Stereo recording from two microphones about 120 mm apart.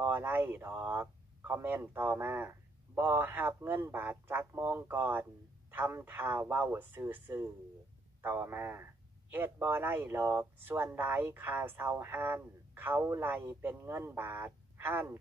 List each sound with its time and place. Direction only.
0.0 s speech: 20° right (ahead or behind)